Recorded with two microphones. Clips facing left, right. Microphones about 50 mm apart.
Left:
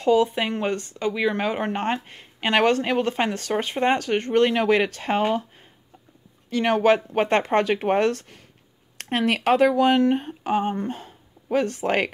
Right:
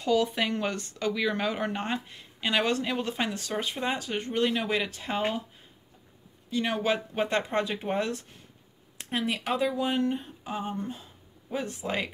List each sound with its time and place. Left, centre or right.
0.0 s a woman's voice: left
6.5 s a woman's voice: left